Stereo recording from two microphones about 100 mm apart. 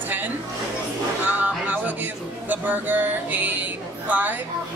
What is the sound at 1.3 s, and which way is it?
Speech, 15° right (ahead or behind).